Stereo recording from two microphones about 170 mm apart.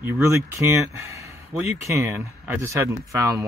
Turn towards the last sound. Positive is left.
turn(degrees=-15)  # may be behind; listen again after turning